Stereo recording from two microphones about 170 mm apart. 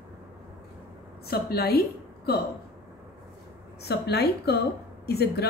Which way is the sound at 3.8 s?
75° left (ahead or behind).